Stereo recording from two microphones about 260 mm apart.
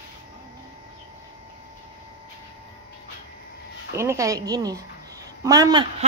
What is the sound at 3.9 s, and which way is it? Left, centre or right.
A woman's voice, centre.